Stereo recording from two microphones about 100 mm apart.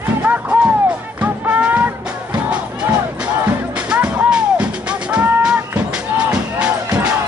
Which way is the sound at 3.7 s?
10° right (ahead or behind).